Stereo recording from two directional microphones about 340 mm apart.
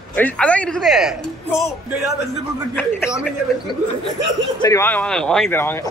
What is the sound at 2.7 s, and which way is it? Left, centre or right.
Speech, centre.